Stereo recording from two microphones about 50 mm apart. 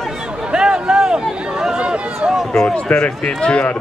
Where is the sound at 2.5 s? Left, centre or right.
Centre.